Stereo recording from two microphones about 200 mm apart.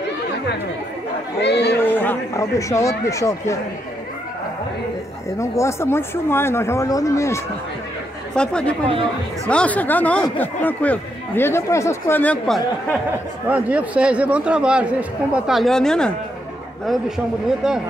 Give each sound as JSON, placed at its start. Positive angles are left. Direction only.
{"t": 1.4, "sound": "speech", "side_deg": 60}
{"t": 1.8, "sound": "speech", "side_deg": 10}
{"t": 5.4, "sound": "a man's voice", "side_deg": 15}
{"t": 13.5, "sound": "a man's voice", "side_deg": -5}
{"t": 17.6, "sound": "a man's voice", "side_deg": -5}